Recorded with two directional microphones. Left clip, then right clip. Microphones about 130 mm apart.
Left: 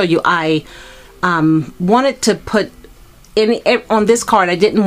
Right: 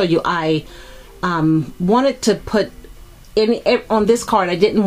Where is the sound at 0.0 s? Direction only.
25° left (ahead or behind).